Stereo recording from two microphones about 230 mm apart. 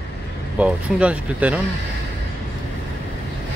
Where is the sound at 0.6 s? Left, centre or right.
Centre.